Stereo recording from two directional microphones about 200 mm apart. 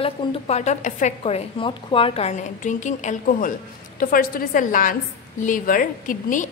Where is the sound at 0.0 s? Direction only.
30° left (ahead or behind).